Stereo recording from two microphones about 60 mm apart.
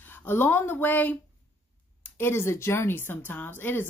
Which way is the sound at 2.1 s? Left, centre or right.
Left.